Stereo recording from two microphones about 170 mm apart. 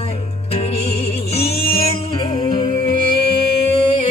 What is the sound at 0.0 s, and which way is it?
Music, 35° left (ahead or behind).